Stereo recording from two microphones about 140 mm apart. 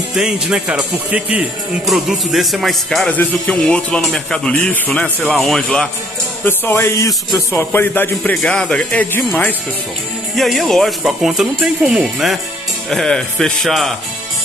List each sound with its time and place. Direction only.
0.1 s speech: 5° right (ahead or behind); by 9.6 s 10° left (ahead or behind)
10.3 s speech: centre (ahead or behind)